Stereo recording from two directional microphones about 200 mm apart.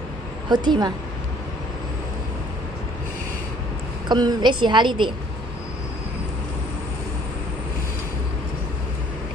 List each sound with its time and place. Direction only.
0.5 s a woman's voice: 20° right (ahead or behind)
4.1 s a woman's voice: 20° right (ahead or behind)